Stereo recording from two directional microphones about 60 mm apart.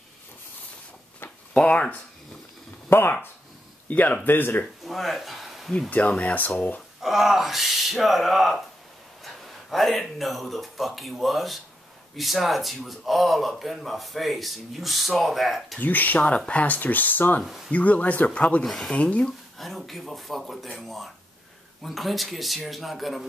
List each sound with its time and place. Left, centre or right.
1.5 s speech: centre
2.9 s speech: left
4.8 s a sound: centre
5.9 s speech: left
7.0 s speech: centre
15.8 s speech: left
19.6 s speech: centre
21.8 s speech: centre